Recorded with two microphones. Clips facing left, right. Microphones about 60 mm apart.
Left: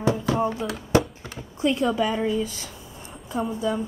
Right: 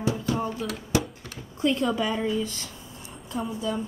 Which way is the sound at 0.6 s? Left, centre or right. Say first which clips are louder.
Left 2 dB; centre.